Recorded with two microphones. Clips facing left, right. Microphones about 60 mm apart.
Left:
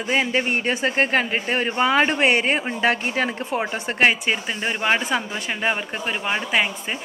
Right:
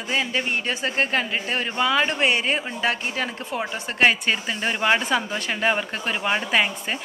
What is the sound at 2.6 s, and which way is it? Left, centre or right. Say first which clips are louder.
A man's voice: left 4 dB; left.